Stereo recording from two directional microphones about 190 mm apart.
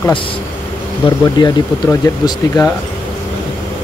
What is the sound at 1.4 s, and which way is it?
Speech, 20° left (ahead or behind).